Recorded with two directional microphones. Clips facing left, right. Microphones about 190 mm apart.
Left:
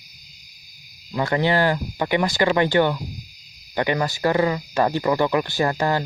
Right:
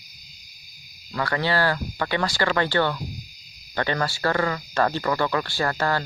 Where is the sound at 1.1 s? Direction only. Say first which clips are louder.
Left 4 dB; 20° left (ahead or behind).